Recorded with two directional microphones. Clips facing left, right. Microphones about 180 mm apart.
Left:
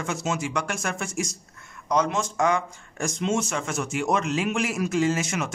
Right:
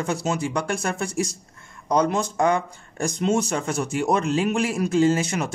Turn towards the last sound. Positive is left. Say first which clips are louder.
# right 4 dB
turn(degrees=-35)  # may be behind; listen again after turning